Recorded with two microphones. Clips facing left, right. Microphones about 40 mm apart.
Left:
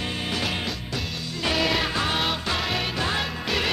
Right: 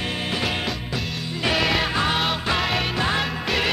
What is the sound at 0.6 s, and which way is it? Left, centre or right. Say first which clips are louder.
Music: right 3 dB; centre.